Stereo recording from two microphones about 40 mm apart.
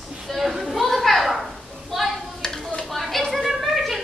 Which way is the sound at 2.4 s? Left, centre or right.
Centre.